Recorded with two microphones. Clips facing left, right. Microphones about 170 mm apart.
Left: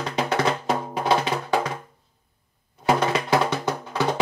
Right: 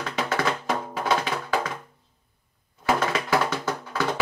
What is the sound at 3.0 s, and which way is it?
Music, 20° left (ahead or behind).